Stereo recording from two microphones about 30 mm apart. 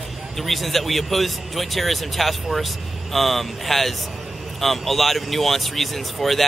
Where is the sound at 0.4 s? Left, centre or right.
Centre.